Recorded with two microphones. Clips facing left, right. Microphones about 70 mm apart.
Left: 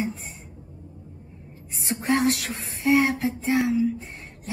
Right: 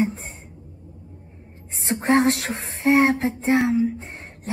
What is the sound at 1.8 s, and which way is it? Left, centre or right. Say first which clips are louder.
Speech: right 4 dB; right.